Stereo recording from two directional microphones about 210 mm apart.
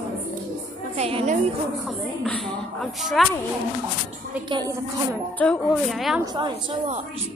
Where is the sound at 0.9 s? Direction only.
30° right (ahead or behind).